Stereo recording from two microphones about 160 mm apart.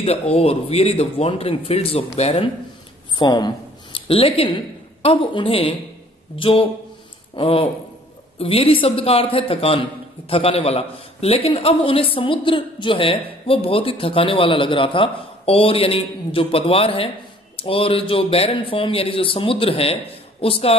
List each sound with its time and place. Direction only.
0.0 s speech: 40° left (ahead or behind)
3.2 s a woman's voice: 30° left (ahead or behind)